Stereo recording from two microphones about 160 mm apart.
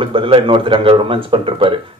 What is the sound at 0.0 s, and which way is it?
Speech, 35° right (ahead or behind).